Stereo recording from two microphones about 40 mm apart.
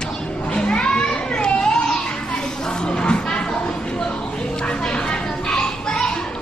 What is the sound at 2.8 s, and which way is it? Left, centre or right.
Music, left.